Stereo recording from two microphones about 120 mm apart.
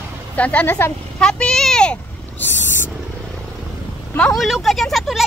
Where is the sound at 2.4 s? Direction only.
20° left (ahead or behind).